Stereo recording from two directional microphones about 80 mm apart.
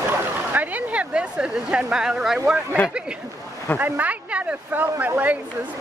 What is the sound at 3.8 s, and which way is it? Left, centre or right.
Speech, right.